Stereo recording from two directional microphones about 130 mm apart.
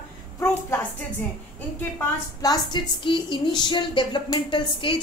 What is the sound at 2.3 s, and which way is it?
Speech, 35° left (ahead or behind).